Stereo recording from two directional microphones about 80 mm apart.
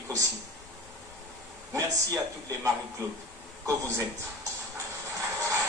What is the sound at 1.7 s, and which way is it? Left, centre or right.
A man's voice, right.